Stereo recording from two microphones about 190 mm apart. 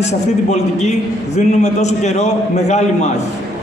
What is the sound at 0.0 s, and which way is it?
A man's voice, 35° left (ahead or behind).